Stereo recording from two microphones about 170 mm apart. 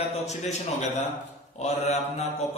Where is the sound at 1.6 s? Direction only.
40° left (ahead or behind).